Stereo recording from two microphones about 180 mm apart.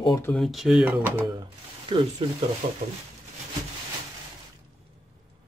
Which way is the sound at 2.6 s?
50° right (ahead or behind).